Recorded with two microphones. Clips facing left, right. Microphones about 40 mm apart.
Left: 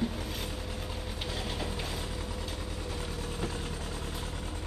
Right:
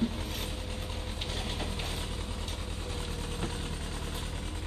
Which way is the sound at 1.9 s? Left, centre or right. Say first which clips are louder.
Left 1 dB; right.